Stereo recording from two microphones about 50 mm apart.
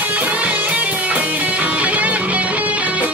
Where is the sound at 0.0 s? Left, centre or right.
Right.